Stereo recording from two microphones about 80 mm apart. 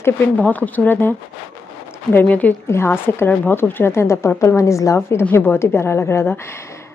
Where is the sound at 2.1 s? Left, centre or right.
Centre.